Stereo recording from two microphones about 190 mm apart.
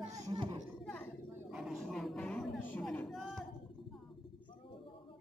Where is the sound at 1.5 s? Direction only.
Centre (ahead or behind).